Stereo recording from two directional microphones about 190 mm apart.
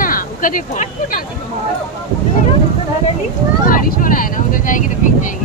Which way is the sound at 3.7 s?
45° left (ahead or behind).